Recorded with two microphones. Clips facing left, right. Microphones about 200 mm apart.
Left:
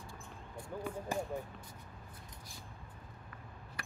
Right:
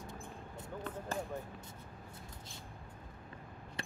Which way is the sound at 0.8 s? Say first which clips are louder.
Left 2 dB; 10° left (ahead or behind).